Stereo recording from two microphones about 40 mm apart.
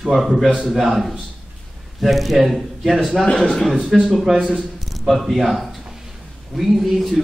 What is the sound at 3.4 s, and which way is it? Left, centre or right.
Speech, centre.